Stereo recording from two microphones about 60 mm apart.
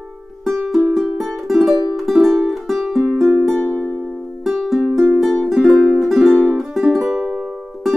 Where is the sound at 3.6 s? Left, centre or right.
Centre.